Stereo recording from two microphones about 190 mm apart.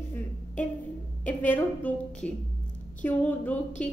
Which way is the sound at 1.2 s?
10° left (ahead or behind).